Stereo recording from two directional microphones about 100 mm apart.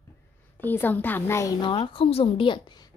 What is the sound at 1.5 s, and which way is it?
Speech, 50° left (ahead or behind).